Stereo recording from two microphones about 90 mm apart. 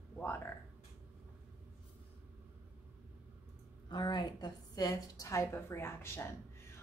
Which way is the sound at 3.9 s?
55° left (ahead or behind).